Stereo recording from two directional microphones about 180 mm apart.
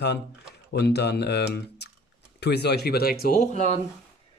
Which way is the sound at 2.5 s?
65° left (ahead or behind).